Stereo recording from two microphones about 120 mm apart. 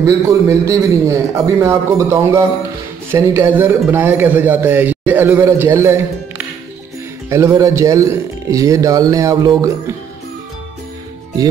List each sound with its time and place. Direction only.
0.0 s speech: 25° right (ahead or behind)